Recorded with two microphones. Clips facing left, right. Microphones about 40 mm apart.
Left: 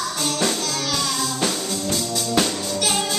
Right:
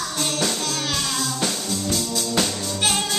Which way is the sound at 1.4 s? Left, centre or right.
Centre.